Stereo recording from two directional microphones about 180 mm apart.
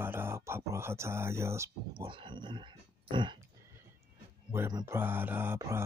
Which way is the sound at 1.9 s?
25° right (ahead or behind).